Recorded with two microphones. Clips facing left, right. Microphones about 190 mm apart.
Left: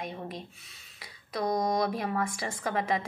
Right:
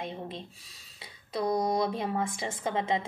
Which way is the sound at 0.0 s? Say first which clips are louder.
Even; 25° right (ahead or behind).